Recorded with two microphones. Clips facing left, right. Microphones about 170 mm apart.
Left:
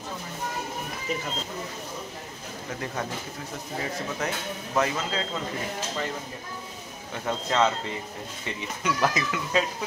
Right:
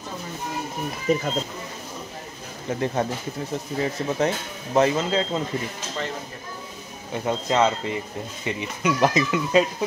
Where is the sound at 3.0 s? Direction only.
30° right (ahead or behind).